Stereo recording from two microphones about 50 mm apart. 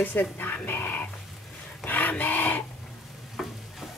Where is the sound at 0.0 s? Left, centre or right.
Left.